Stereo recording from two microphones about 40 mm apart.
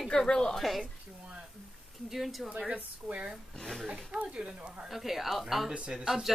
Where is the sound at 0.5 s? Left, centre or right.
Centre.